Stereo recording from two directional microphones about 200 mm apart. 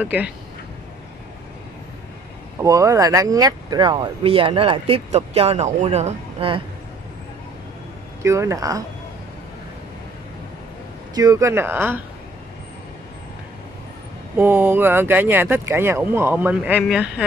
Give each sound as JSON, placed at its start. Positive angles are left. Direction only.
{"t": 0.0, "sound": "speech", "side_deg": -5}
{"t": 2.6, "sound": "speech", "side_deg": -15}
{"t": 8.2, "sound": "speech", "side_deg": -15}
{"t": 11.1, "sound": "speech", "side_deg": -15}
{"t": 14.3, "sound": "speech", "side_deg": -10}